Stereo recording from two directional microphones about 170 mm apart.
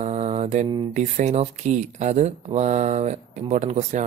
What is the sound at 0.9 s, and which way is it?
Speech, 45° right (ahead or behind).